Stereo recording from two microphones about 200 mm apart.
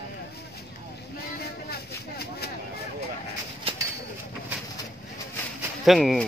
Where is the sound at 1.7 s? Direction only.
50° left (ahead or behind).